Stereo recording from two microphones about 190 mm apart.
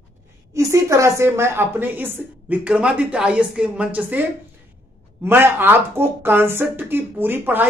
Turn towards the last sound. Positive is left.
turn(degrees=-10)  # may be behind; listen again after turning